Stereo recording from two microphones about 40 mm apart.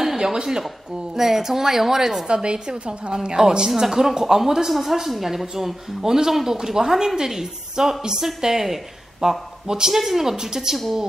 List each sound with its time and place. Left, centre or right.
0.0 s a woman's voice: centre
2.2 s a woman's voice: right